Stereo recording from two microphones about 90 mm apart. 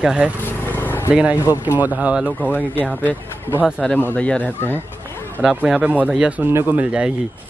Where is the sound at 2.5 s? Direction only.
20° left (ahead or behind).